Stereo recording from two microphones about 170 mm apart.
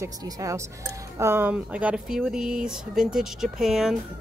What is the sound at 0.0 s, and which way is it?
Speech, 20° right (ahead or behind).